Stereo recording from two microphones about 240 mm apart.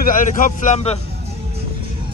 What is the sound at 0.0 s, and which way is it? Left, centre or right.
A man's voice, left.